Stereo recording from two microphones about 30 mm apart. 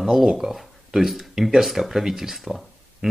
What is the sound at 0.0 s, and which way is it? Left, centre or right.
Speech, centre.